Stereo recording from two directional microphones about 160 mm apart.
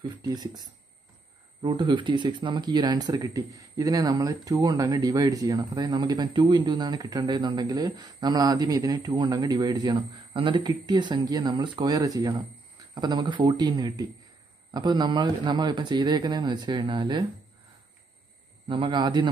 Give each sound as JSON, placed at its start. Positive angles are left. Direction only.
{"t": 0.2, "sound": "speech", "side_deg": -25}
{"t": 18.7, "sound": "speech", "side_deg": -30}